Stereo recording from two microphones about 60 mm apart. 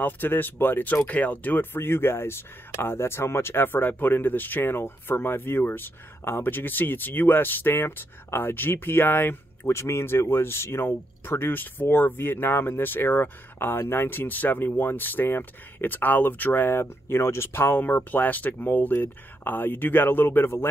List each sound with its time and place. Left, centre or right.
0.0 s speech: left
9.7 s speech: left